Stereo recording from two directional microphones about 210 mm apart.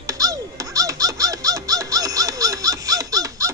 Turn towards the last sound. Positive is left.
turn(degrees=-15)  # may be behind; listen again after turning